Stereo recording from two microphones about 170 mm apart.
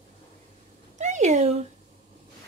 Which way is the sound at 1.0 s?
45° right (ahead or behind).